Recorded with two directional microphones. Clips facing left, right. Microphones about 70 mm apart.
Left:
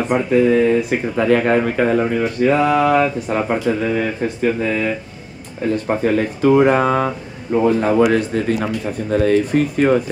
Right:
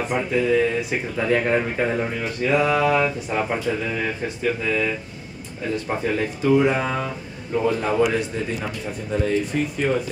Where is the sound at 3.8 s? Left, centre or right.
Left.